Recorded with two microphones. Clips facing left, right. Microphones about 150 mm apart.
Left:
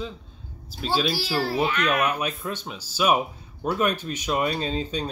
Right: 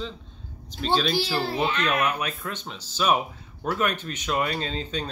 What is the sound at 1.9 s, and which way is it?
Speech, 25° left (ahead or behind).